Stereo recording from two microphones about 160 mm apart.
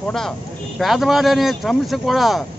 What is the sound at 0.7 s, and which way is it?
Speech, centre (ahead or behind).